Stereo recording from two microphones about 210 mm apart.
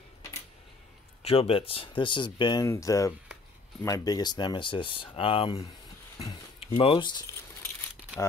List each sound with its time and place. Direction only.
1.2 s speech: 25° left (ahead or behind)
6.7 s speech: 25° left (ahead or behind)